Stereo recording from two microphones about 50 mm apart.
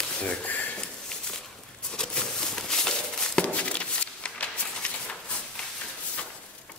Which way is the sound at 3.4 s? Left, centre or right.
Left.